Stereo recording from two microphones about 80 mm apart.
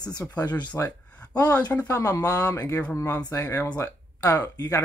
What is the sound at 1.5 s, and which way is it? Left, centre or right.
Speech, centre.